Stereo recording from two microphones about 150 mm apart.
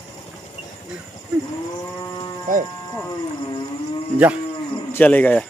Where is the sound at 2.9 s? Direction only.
20° left (ahead or behind).